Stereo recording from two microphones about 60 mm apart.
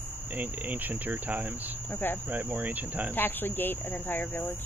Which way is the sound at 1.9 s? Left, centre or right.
Left.